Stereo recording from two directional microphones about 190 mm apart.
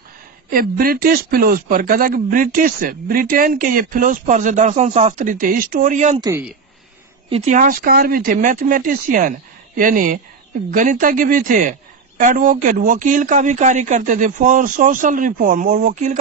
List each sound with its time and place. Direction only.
0.5 s speech: 50° right (ahead or behind)
7.2 s speech: 35° right (ahead or behind)